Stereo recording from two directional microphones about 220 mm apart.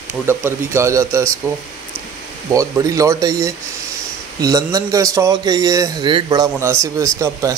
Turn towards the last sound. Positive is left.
turn(degrees=-15)  # may be behind; listen again after turning